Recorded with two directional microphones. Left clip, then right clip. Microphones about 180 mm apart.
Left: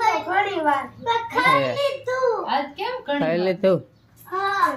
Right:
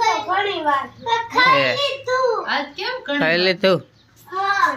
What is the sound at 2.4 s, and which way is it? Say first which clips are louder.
Speech: right 1 dB; 20° left (ahead or behind).